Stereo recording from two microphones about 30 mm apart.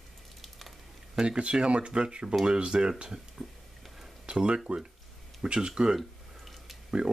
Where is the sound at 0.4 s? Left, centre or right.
Centre.